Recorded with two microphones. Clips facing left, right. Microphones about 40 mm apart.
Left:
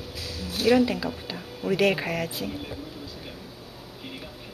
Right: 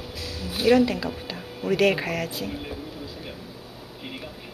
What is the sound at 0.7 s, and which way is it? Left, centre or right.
Speech, centre.